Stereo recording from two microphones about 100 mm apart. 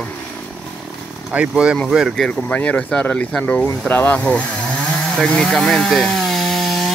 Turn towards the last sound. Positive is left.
turn(degrees=0)  # may be behind; listen again after turning